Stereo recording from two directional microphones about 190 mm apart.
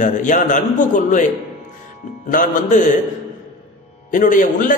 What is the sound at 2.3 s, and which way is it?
Speech, 45° left (ahead or behind).